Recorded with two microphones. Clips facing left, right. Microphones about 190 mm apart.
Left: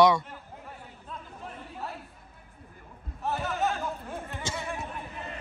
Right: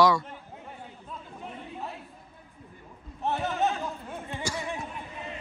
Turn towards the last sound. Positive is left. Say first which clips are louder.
# right 2 dB
turn(degrees=20)  # may be behind; listen again after turning